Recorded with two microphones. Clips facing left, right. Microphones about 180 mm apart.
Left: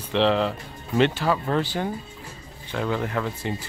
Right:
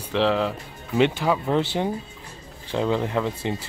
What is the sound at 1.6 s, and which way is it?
Speech, 25° right (ahead or behind).